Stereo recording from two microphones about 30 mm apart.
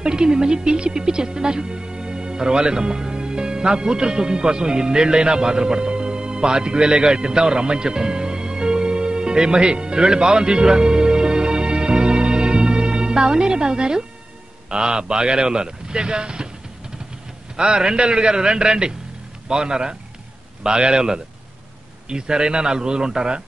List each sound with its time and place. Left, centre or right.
0.0 s speech: right
17.6 s speech: right